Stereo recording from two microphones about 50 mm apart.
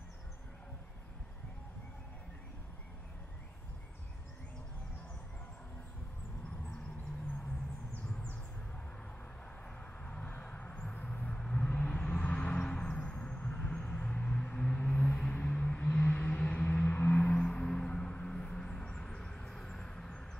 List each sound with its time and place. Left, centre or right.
10.0 s vehicle: left
16.3 s music: centre
16.5 s music: left; by 20.2 s centre